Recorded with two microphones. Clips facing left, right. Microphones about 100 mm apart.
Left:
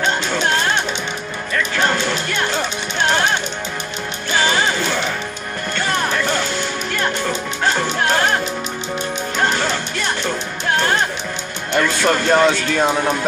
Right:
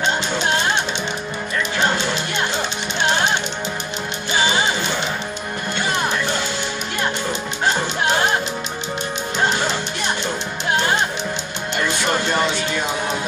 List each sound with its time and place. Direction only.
4.4 s music: 20° right (ahead or behind)
12.0 s speech: 60° left (ahead or behind)